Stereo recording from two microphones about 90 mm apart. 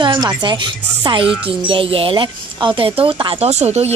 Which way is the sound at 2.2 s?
60° right (ahead or behind).